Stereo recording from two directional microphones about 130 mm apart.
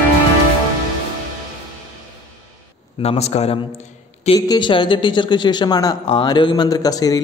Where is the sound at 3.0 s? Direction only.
55° left (ahead or behind).